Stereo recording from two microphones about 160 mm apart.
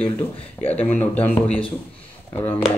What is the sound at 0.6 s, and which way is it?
Speech, 10° left (ahead or behind).